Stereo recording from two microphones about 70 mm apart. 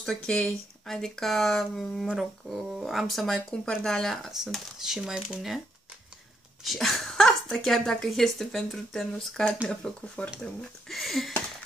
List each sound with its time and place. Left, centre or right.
0.0 s speech: centre
4.3 s speech: centre
6.6 s speech: centre
10.4 s speech: centre